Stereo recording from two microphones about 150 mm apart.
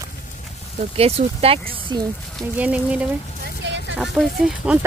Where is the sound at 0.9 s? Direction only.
40° right (ahead or behind).